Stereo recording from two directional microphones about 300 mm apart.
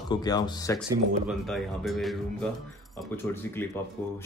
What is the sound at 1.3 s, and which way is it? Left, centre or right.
Speech, centre.